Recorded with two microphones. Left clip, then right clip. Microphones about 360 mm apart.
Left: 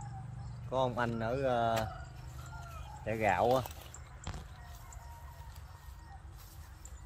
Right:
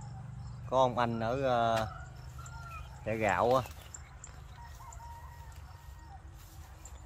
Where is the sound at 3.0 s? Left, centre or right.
Centre.